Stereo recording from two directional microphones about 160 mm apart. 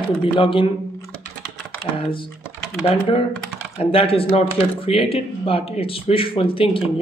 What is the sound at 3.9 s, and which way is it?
Speech, 35° left (ahead or behind).